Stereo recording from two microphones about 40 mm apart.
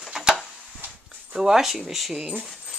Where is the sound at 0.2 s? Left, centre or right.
Centre.